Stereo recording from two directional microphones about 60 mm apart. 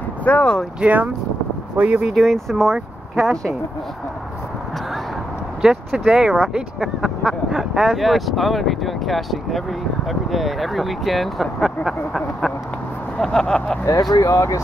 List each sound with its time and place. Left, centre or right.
0.2 s speech: left
0.7 s speech: right
2.1 s speech: centre
5.6 s speech: centre
14.1 s speech: left